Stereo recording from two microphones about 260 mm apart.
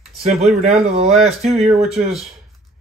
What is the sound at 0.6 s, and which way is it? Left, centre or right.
Speech, right.